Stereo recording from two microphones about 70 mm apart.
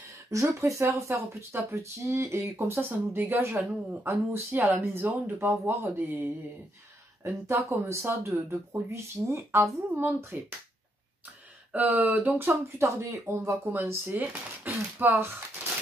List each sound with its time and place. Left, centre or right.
0.3 s speech: right
4.1 s speech: right
5.5 s speech: right
5.9 s speech: right
7.2 s speech: right
11.7 s speech: right
12.6 s speech: right
14.1 s speech: right